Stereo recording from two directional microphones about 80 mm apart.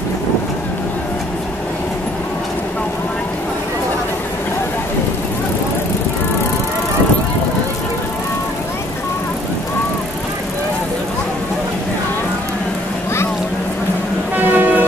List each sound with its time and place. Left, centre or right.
14.3 s music: right